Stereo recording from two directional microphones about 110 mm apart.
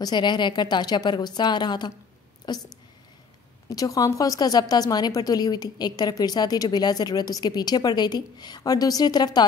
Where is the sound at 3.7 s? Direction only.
35° left (ahead or behind).